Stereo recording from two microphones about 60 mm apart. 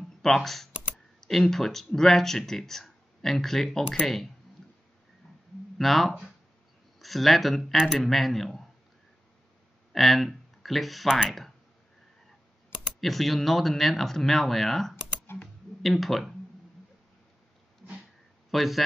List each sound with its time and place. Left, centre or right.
0.2 s speech: centre
5.8 s speech: centre
9.9 s speech: centre
13.0 s speech: centre
15.4 s a sound: centre
18.5 s speech: centre